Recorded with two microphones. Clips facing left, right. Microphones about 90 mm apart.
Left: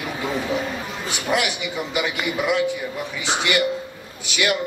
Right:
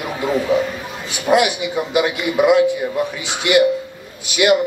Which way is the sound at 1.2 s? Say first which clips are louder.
Right 8 dB; 15° right (ahead or behind).